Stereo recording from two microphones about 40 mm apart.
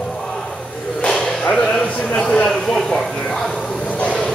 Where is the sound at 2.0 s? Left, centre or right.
Left.